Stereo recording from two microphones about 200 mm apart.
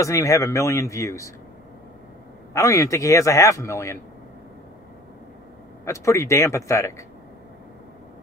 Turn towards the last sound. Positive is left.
turn(degrees=15)  # may be behind; listen again after turning